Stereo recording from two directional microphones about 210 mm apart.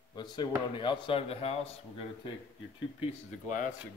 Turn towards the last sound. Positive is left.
turn(degrees=35)  # may be behind; listen again after turning